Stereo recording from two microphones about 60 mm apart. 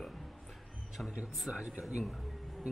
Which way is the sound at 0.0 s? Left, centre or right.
Centre.